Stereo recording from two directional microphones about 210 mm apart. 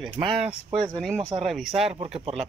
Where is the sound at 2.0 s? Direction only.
30° right (ahead or behind).